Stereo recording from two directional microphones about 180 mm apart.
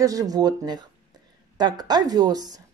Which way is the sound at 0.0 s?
20° right (ahead or behind).